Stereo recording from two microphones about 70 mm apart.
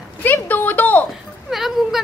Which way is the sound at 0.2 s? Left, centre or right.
Left.